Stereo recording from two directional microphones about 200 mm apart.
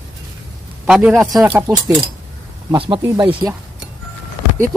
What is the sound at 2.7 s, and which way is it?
Speech, 25° right (ahead or behind).